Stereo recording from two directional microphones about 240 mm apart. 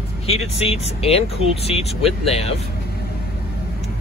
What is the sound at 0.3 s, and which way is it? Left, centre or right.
Speech, left.